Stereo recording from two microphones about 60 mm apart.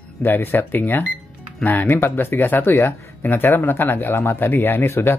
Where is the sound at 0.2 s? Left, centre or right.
Left.